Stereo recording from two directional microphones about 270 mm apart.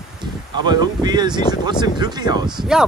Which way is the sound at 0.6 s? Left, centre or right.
Centre.